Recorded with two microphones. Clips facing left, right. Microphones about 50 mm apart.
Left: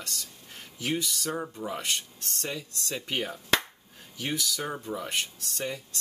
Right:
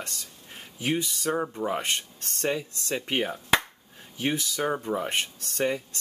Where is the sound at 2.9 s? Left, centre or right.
Right.